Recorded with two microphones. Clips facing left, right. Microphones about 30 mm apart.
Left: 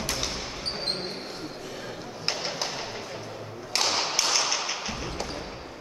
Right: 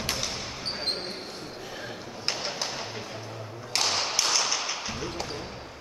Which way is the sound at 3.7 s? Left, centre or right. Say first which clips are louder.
Left 1 dB; centre.